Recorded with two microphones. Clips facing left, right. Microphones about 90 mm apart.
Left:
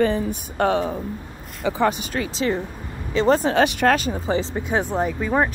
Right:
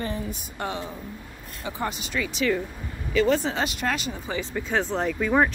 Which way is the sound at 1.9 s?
50° left (ahead or behind).